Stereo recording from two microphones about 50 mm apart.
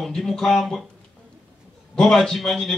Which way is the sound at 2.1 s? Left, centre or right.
Centre.